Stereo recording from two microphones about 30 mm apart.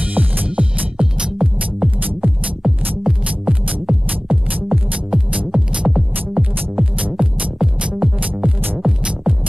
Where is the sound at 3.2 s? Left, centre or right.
Right.